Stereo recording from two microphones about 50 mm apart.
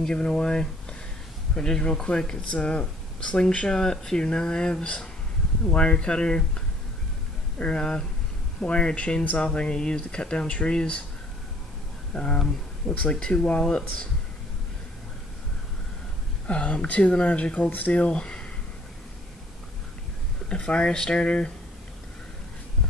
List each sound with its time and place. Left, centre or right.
0.1 s speech: centre
12.1 s speech: centre
16.4 s speech: left
20.4 s speech: left